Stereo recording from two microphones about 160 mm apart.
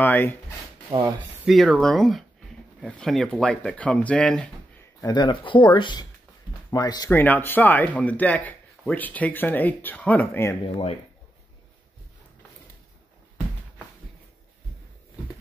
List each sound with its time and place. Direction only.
0.0 s speech: 10° left (ahead or behind)
0.9 s speech: 30° right (ahead or behind)
1.4 s speech: centre (ahead or behind)
5.0 s speech: 25° left (ahead or behind)
7.1 s speech: 10° left (ahead or behind)